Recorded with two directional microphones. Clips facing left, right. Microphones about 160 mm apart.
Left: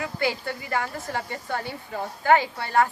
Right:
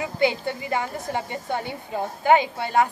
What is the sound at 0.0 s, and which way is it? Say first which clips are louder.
A woman's voice: right 4 dB; 20° right (ahead or behind).